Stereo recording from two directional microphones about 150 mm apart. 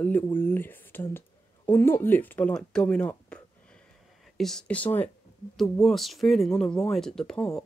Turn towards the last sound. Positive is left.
turn(degrees=5)  # may be behind; listen again after turning